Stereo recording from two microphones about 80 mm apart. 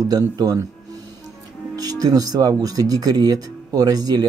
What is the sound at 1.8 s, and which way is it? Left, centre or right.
Speech, right.